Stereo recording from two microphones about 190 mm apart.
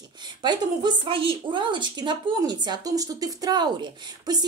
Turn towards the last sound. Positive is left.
turn(degrees=-20)  # may be behind; listen again after turning